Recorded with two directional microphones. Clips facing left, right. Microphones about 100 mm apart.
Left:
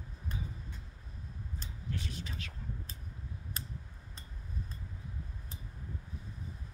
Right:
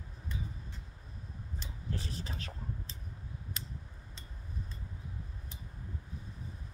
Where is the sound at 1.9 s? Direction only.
35° right (ahead or behind).